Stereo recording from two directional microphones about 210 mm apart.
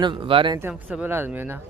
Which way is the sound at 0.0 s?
25° right (ahead or behind).